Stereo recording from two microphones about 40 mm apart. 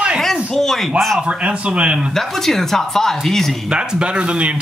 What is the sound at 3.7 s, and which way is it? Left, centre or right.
Speech, right.